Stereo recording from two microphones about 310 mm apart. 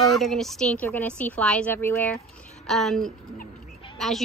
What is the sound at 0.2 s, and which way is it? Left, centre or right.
Speech, centre.